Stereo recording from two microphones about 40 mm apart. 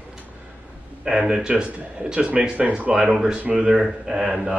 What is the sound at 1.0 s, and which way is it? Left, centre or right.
Speech, right.